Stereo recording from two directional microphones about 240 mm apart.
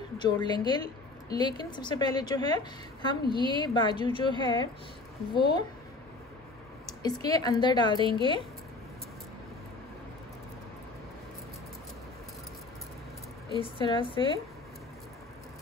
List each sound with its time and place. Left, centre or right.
0.2 s a woman's voice: centre
6.9 s a woman's voice: centre
13.6 s a woman's voice: centre